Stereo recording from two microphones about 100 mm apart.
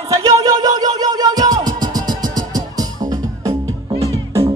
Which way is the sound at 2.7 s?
40° right (ahead or behind).